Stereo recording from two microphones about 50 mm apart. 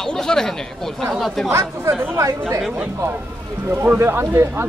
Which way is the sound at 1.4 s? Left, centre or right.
Right.